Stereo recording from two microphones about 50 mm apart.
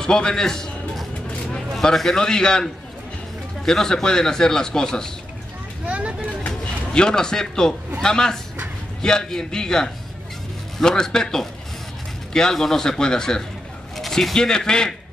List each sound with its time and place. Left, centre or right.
0.0 s a man's voice: centre
5.9 s vehicle: right
6.6 s a man's voice: centre
13.9 s speech: centre